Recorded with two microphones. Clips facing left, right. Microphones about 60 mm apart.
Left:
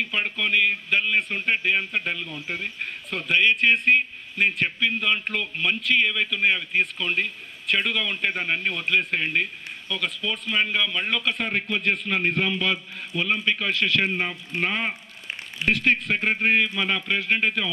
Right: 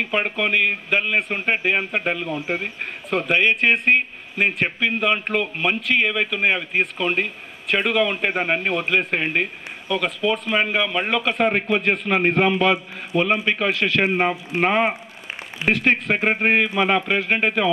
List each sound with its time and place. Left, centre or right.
0.0 s a man's voice: right
8.1 s a man's voice: centre
8.4 s a man's voice: right